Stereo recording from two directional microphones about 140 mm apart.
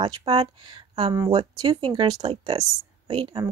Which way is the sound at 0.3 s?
45° right (ahead or behind).